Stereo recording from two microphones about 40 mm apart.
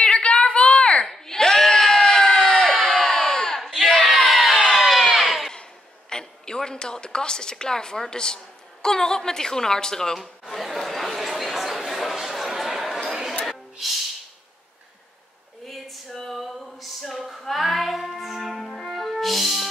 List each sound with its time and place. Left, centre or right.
0.0 s a sound: left
1.1 s crowd: centre
4.0 s music: centre
6.0 s a sound: centre
8.8 s a woman's voice: centre
10.5 s chatter: centre
13.5 s music: centre
15.6 s a sound: centre
18.6 s music: centre
18.9 s music: centre